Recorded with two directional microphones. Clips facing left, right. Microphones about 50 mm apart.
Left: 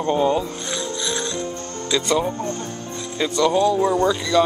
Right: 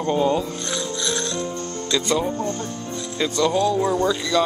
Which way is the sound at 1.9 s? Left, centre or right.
Centre.